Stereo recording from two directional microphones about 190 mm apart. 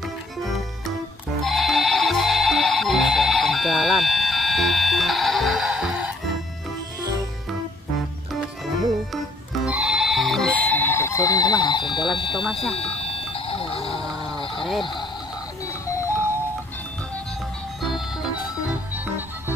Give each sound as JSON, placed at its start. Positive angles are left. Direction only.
{"t": 1.4, "sound": "music", "side_deg": 0}
{"t": 9.7, "sound": "sheep", "side_deg": -5}
{"t": 12.7, "sound": "a sound", "side_deg": 30}
{"t": 14.0, "sound": "a sound", "side_deg": 0}
{"t": 14.6, "sound": "speech", "side_deg": 0}
{"t": 15.6, "sound": "music", "side_deg": 15}
{"t": 17.8, "sound": "organ", "side_deg": 0}